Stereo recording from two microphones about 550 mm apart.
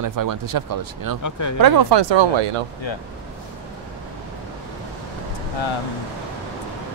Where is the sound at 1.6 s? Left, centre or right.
Right.